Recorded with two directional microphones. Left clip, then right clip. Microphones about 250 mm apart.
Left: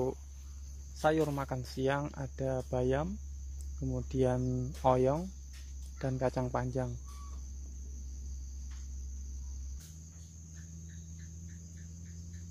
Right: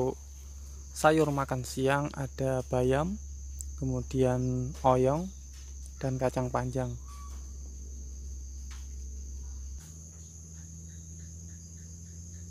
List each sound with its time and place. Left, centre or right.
0.9 s speech: right; by 6.9 s centre